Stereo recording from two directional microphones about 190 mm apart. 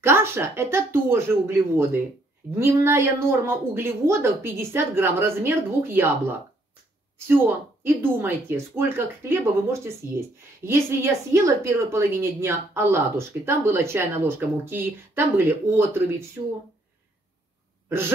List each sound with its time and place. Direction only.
0.0 s a woman's voice: 15° right (ahead or behind)
7.2 s a woman's voice: 10° right (ahead or behind)